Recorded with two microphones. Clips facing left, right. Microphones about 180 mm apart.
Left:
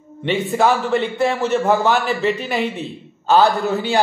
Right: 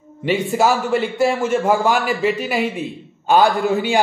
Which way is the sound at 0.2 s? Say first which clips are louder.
Even; 5° right (ahead or behind).